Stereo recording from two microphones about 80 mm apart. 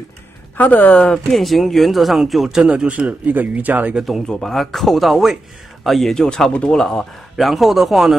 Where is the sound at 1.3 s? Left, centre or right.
Centre.